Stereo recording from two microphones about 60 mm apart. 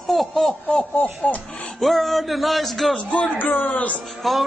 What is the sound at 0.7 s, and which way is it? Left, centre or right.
Speech, left.